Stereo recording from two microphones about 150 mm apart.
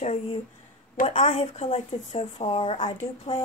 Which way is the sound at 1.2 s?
40° left (ahead or behind).